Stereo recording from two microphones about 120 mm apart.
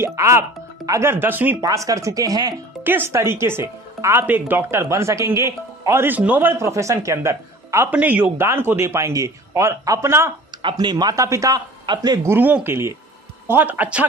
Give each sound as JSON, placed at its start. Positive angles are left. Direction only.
{"t": 0.0, "sound": "speech", "side_deg": -25}
{"t": 1.9, "sound": "speech", "side_deg": -30}
{"t": 2.8, "sound": "speech", "side_deg": -15}
{"t": 10.6, "sound": "speech", "side_deg": -40}
{"t": 11.8, "sound": "speech", "side_deg": -40}
{"t": 12.3, "sound": "speech", "side_deg": -15}